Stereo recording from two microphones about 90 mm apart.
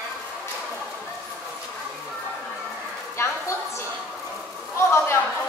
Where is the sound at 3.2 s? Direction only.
30° left (ahead or behind).